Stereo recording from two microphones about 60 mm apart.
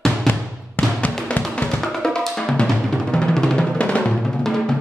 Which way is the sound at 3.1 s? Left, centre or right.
Centre.